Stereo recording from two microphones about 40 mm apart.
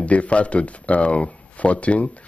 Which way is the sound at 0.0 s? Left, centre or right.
Left.